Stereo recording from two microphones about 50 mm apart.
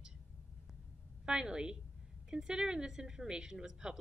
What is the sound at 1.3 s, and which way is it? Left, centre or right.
Speech, centre.